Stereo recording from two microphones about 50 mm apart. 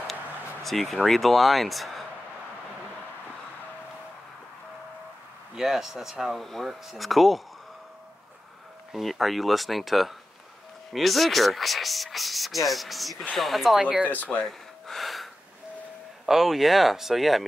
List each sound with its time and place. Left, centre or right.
0.0 s a sound: centre
5.5 s speech: centre
8.9 s speech: centre
13.7 s speech: centre
14.1 s speech: left
14.4 s gasp: centre
16.3 s speech: centre